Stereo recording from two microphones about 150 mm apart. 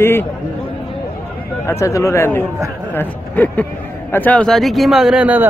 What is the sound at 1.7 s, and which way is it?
A man's voice, 20° left (ahead or behind).